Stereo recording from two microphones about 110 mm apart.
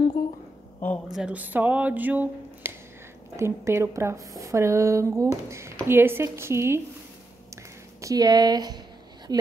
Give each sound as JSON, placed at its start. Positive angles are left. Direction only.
{"t": 1.1, "sound": "a woman's voice", "side_deg": -10}
{"t": 8.0, "sound": "speech", "side_deg": -35}